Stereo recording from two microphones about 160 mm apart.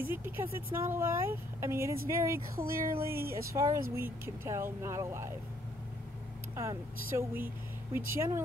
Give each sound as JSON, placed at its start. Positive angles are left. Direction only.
{"t": 0.0, "sound": "speech", "side_deg": -15}
{"t": 2.6, "sound": "speech", "side_deg": -65}
{"t": 3.5, "sound": "speech", "side_deg": -20}
{"t": 6.5, "sound": "speech", "side_deg": -20}